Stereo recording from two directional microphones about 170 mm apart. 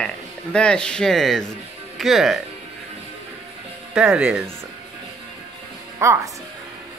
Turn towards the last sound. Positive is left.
turn(degrees=-15)  # may be behind; listen again after turning